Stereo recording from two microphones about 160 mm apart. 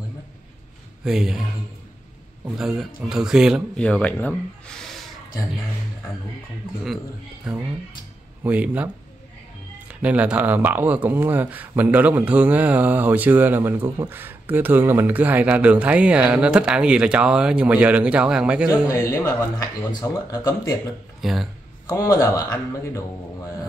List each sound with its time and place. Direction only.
1.0 s speech: 5° right (ahead or behind)
2.5 s speech: 5° right (ahead or behind)
3.7 s speech: 5° left (ahead or behind)
7.5 s speech: 5° right (ahead or behind)
18.7 s speech: 20° left (ahead or behind)
21.2 s speech: centre (ahead or behind)
21.8 s speech: 20° left (ahead or behind)